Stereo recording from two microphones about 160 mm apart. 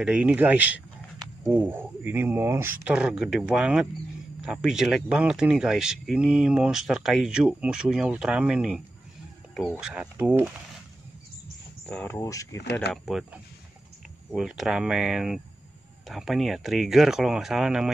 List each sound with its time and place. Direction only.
0.0 s speech: 5° right (ahead or behind)
11.8 s speech: 10° left (ahead or behind)
12.2 s speech: 20° left (ahead or behind)
12.9 s speech: centre (ahead or behind)